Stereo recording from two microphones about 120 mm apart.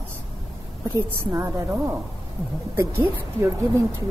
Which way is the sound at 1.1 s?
20° right (ahead or behind).